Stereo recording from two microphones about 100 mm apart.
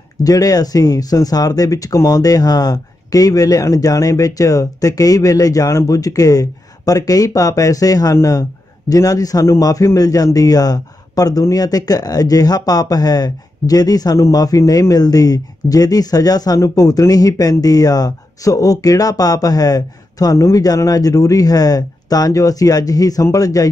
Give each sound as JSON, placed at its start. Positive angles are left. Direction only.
{"t": 0.2, "sound": "speech", "side_deg": 35}